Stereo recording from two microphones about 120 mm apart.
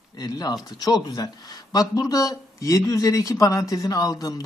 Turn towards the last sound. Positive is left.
turn(degrees=30)  # may be behind; listen again after turning